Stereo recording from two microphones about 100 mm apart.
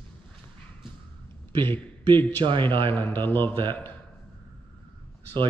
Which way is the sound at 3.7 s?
20° left (ahead or behind).